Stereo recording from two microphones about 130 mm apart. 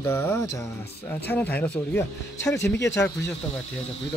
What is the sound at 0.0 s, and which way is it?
Speech, 15° left (ahead or behind).